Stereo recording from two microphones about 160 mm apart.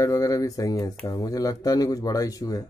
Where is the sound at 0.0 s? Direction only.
20° left (ahead or behind).